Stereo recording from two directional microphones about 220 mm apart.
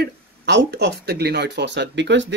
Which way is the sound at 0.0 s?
50° right (ahead or behind).